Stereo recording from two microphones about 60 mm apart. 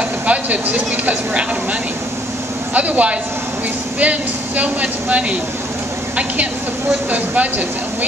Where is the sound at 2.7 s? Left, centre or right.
Right.